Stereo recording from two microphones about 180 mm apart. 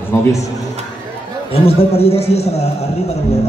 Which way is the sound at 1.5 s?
35° left (ahead or behind).